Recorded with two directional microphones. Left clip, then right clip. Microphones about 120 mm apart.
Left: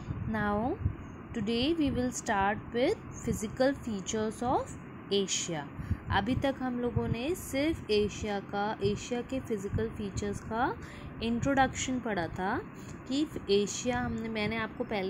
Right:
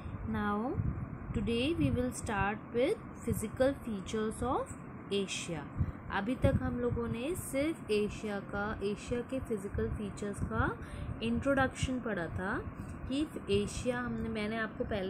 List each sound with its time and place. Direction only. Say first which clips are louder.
0.3 s speech: left 4 dB; 35° left (ahead or behind)